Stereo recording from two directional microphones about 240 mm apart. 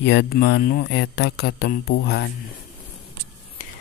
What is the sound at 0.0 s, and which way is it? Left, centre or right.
Speech, left.